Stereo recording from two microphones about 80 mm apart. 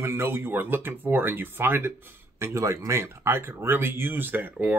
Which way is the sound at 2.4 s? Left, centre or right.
Right.